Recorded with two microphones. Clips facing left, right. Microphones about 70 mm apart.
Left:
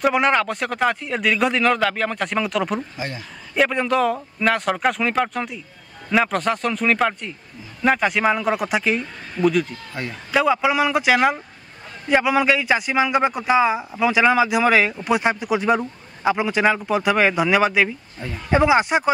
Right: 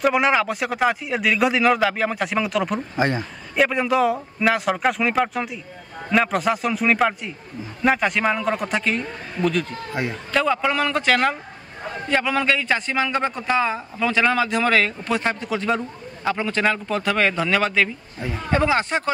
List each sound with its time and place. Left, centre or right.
0.0 s a man's voice: centre
3.0 s a man's voice: right
3.5 s a man's voice: centre
10.0 s speech: centre
10.3 s a man's voice: centre